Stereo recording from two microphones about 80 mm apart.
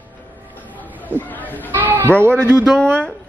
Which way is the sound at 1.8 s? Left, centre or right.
Right.